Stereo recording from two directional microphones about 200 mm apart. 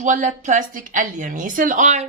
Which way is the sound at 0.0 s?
40° right (ahead or behind).